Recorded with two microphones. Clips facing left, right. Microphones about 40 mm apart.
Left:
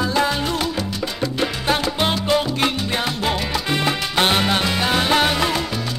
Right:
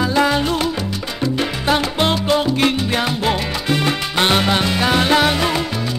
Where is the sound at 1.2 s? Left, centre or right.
Centre.